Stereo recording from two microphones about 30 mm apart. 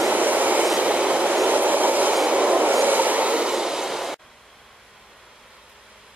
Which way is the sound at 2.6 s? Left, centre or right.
Right.